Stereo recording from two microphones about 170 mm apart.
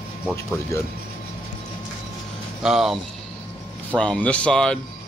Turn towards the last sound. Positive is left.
turn(degrees=5)  # may be behind; listen again after turning